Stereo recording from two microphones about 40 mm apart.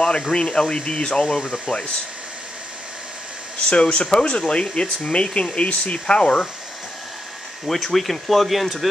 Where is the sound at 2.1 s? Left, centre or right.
Right.